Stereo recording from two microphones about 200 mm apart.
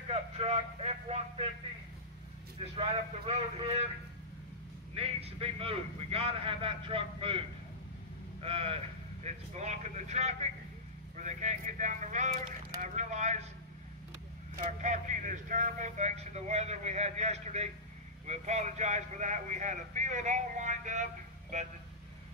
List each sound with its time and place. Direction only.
0.1 s a man's voice: 30° right (ahead or behind)
2.6 s speech: 30° right (ahead or behind)
4.9 s a man's voice: 30° right (ahead or behind)
14.6 s speech: 35° right (ahead or behind)